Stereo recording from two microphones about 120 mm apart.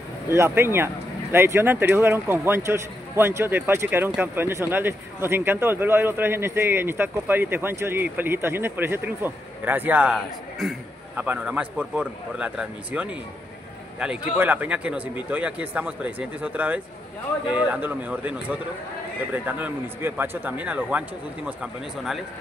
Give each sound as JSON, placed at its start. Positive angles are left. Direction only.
{"t": 0.3, "sound": "speech", "side_deg": -20}
{"t": 11.1, "sound": "speech", "side_deg": -15}